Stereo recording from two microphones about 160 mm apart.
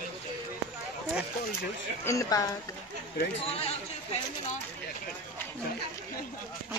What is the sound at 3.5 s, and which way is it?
Speech, 40° left (ahead or behind).